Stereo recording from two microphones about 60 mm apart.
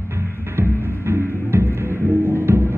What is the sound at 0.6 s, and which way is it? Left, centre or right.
Music, right.